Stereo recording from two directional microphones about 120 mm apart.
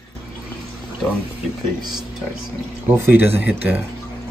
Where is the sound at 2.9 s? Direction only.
20° right (ahead or behind).